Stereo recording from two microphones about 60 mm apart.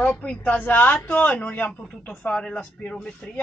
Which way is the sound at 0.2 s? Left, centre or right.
Left.